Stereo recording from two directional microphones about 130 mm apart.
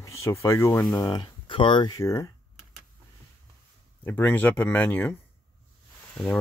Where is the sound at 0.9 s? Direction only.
30° left (ahead or behind).